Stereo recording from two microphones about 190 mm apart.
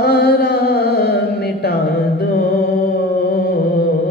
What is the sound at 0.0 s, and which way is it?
Music, 55° left (ahead or behind).